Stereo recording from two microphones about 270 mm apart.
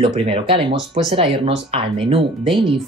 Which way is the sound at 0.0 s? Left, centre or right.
Centre.